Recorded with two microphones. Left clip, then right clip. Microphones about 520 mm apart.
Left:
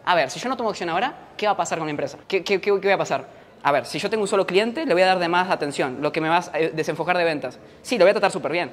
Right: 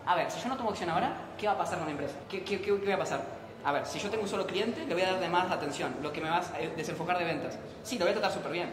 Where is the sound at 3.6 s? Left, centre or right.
Left.